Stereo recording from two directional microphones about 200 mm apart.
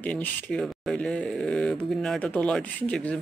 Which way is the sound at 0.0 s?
5° left (ahead or behind).